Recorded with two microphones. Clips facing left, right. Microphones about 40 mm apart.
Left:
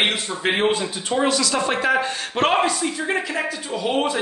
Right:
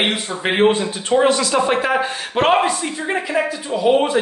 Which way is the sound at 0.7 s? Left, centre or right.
Right.